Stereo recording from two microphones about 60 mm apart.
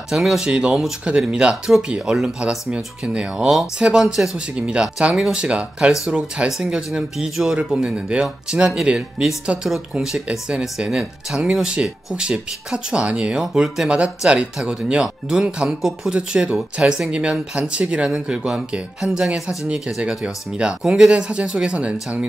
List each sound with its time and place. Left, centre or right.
0.1 s speech: centre
0.5 s speech: centre